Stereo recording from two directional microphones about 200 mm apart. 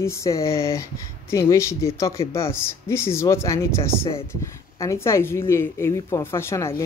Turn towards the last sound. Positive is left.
turn(degrees=15)  # may be behind; listen again after turning